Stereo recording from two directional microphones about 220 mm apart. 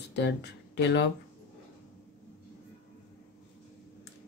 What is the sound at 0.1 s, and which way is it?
Speech, 50° left (ahead or behind).